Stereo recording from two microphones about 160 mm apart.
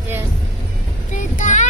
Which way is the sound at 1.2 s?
50° left (ahead or behind).